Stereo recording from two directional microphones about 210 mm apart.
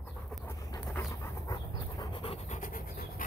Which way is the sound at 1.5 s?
20° left (ahead or behind).